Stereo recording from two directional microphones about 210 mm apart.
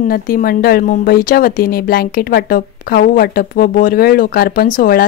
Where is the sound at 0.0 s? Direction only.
45° left (ahead or behind).